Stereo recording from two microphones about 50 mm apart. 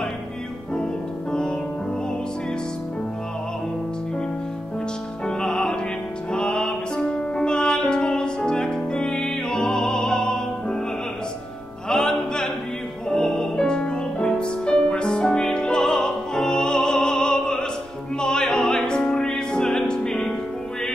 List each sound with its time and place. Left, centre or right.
1.3 s music: centre
5.2 s music: centre
11.9 s music: centre